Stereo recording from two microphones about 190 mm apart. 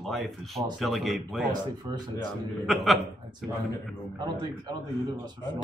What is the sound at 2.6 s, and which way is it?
Speech, centre (ahead or behind).